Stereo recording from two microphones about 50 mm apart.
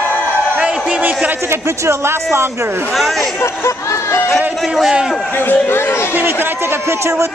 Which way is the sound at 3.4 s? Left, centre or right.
Left.